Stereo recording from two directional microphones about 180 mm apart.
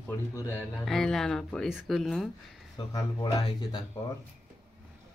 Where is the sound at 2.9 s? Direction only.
20° left (ahead or behind).